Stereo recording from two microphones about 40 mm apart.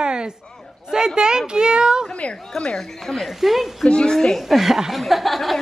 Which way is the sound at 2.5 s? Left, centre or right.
Centre.